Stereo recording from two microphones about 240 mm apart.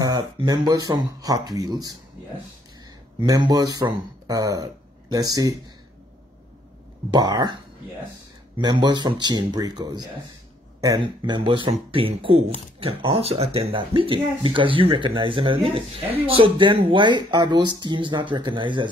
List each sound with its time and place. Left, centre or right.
0.0 s speech: centre
3.2 s speech: centre
7.1 s speech: centre
8.5 s speech: centre